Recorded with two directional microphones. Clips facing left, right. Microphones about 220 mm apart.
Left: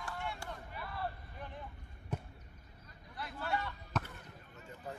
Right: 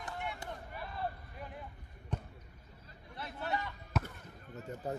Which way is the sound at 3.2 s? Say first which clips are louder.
Even; 25° right (ahead or behind).